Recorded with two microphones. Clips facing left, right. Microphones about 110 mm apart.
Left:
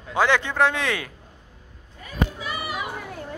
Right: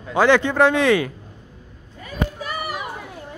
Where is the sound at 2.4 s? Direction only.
45° right (ahead or behind).